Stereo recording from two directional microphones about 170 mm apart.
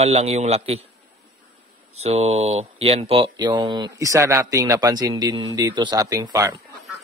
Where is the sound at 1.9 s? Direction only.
40° right (ahead or behind); by 6.6 s 20° right (ahead or behind).